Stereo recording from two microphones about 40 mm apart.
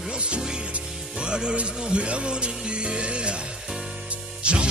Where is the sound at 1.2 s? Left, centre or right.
Right.